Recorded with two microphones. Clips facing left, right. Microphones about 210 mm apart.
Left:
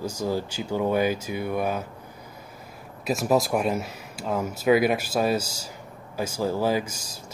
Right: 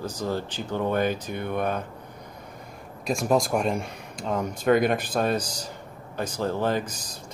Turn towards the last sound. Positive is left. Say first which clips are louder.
# left 1 dB
turn(degrees=10)  # may be behind; listen again after turning